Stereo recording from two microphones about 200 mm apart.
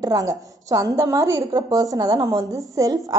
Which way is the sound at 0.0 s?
15° right (ahead or behind).